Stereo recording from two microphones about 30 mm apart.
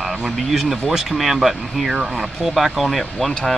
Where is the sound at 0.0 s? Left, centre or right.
Centre.